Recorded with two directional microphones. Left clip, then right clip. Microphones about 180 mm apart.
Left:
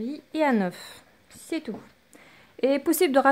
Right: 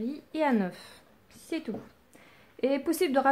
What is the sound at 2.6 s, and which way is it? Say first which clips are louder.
Speech: left 5 dB; 55° left (ahead or behind).